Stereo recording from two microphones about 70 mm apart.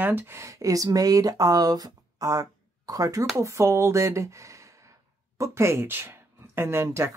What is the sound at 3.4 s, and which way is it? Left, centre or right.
Speech, right.